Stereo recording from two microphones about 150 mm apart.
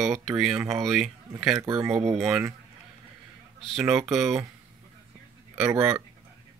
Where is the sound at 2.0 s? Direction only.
Centre (ahead or behind).